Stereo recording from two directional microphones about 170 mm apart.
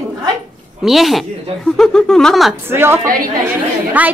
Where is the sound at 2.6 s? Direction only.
15° right (ahead or behind).